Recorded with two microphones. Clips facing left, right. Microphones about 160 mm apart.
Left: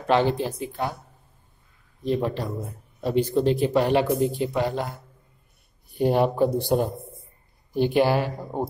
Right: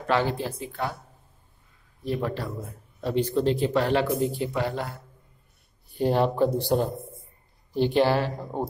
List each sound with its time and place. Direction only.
0.0 s speech: 20° left (ahead or behind)
2.0 s speech: 20° left (ahead or behind)